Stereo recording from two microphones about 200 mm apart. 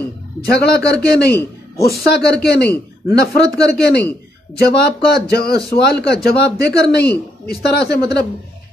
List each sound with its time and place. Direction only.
0.5 s a man's voice: 50° left (ahead or behind)